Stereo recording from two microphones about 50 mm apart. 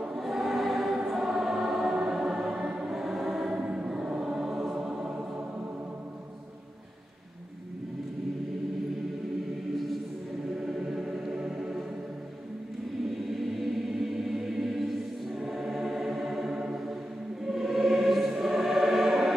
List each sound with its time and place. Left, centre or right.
0.0 s choir: centre
3.5 s music: centre
4.7 s choir: centre
10.6 s music: centre
13.3 s choir: centre